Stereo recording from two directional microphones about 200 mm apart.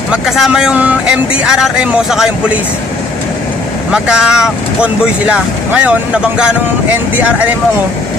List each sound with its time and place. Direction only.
0.1 s speech: 5° right (ahead or behind)
3.9 s speech: 5° right (ahead or behind)